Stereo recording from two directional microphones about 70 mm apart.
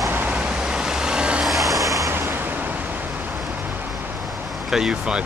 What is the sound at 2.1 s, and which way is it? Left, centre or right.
Vehicle, right.